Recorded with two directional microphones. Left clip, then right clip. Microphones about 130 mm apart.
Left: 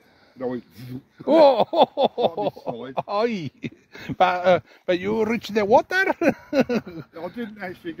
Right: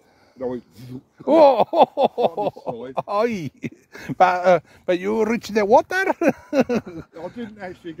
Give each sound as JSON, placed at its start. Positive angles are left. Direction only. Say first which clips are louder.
{"t": 0.4, "sound": "speech", "louder": "right 1 dB", "side_deg": 65}
{"t": 1.2, "sound": "speech", "louder": "right 2 dB", "side_deg": -35}
{"t": 5.1, "sound": "speech", "louder": "right 2 dB", "side_deg": -60}
{"t": 7.2, "sound": "speech", "louder": "left 2 dB", "side_deg": 60}